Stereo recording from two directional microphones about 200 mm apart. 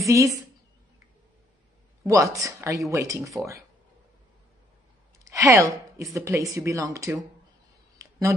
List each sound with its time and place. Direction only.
0.1 s speech: 15° right (ahead or behind)
2.0 s speech: 15° right (ahead or behind)
5.2 s a woman's voice: 15° right (ahead or behind)